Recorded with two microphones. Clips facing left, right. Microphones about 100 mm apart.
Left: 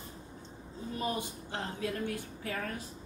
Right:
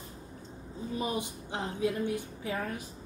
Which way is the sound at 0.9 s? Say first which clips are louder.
Right 2 dB; 15° right (ahead or behind).